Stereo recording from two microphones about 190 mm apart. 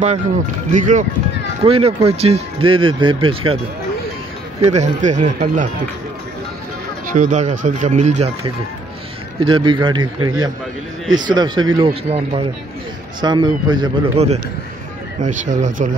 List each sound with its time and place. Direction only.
0.7 s speech: 40° right (ahead or behind)
1.6 s speech: 30° right (ahead or behind)
4.6 s speech: 35° right (ahead or behind)
7.1 s speech: 40° right (ahead or behind)
9.4 s speech: 25° right (ahead or behind)